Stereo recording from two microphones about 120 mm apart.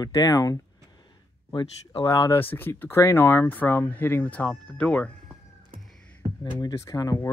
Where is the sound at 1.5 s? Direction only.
40° left (ahead or behind).